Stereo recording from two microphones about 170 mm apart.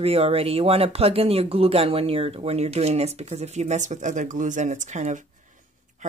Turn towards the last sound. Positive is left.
turn(degrees=-45)  # may be behind; listen again after turning